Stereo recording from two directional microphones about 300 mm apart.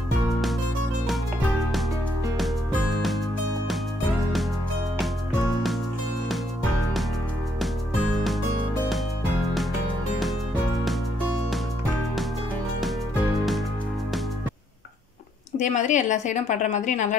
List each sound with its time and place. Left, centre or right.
15.6 s a woman's voice: left